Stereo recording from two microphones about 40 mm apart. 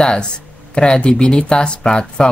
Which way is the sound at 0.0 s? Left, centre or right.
Centre.